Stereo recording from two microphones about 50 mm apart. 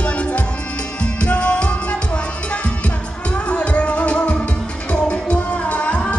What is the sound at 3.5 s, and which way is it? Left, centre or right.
Music, left.